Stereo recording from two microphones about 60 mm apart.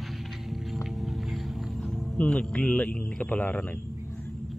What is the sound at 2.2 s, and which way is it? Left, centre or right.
Speech, centre.